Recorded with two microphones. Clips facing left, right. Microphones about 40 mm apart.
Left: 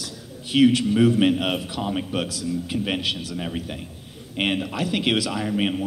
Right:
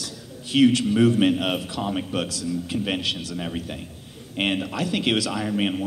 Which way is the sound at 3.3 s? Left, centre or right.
Centre.